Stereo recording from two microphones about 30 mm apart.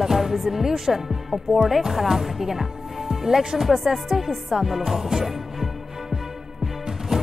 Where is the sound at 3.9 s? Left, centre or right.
Centre.